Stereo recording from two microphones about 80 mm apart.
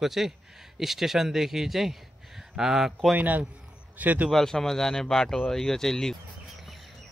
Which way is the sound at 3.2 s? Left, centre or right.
Right.